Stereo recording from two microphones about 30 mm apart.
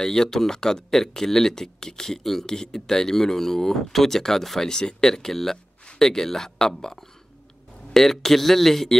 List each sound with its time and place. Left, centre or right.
0.0 s speech: centre
2.4 s speech: centre